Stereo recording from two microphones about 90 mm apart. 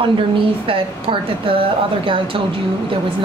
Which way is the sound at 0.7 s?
85° right.